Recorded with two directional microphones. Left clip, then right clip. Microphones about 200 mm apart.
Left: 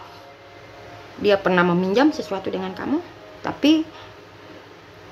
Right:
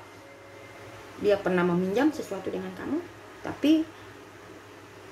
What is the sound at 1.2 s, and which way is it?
A woman's voice, 25° left (ahead or behind).